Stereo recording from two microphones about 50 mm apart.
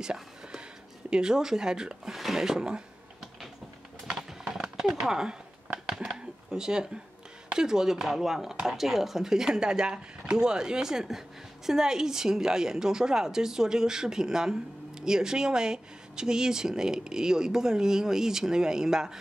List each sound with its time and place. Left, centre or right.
0.0 s whispering: centre
1.1 s speech: centre
4.1 s a sound: centre
7.5 s speech: centre